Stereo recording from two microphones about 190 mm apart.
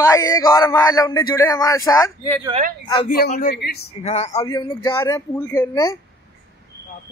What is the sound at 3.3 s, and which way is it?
Speech, 55° left (ahead or behind).